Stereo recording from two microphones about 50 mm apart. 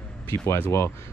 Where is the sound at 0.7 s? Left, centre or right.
Left.